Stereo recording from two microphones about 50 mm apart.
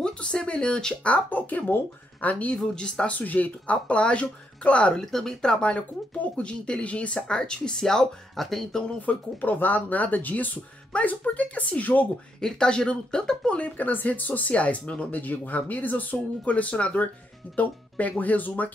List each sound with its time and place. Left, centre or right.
0.0 s speech: centre
1.1 s speech: left
2.5 s speech: centre
3.2 s speech: left
5.1 s speech: centre
9.0 s speech: left
12.4 s speech: centre
13.6 s speech: left